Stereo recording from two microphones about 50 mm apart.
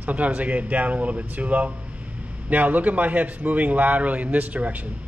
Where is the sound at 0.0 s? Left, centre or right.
Right.